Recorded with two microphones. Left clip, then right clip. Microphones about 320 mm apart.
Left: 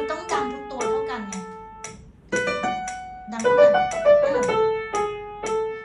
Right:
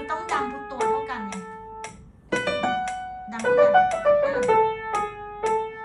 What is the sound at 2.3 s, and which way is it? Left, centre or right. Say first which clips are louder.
Music: even; centre.